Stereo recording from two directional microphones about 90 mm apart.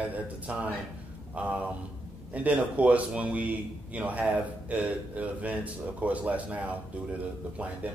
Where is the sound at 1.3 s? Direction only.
15° right (ahead or behind).